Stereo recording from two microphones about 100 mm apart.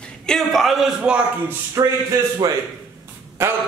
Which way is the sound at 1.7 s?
35° right (ahead or behind).